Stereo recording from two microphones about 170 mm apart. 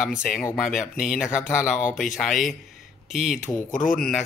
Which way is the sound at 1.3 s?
15° left (ahead or behind).